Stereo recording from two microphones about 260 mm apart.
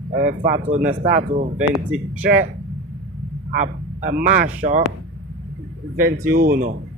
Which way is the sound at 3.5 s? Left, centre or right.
Right.